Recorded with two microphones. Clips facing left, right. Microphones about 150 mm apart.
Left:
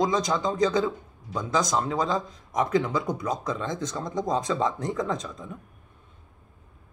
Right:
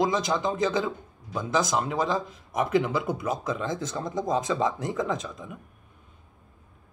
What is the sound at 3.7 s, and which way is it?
Speech, 25° right (ahead or behind).